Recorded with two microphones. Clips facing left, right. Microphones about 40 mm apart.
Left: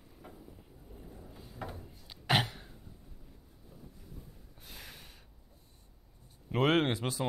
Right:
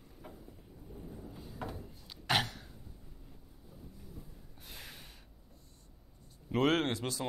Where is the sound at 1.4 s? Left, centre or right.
Centre.